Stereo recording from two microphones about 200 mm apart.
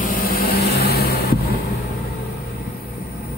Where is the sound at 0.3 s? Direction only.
50° left (ahead or behind).